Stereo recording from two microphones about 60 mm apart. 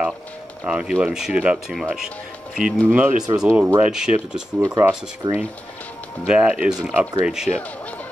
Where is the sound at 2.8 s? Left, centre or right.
Right.